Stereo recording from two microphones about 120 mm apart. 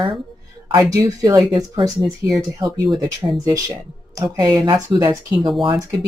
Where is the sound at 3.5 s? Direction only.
30° right (ahead or behind).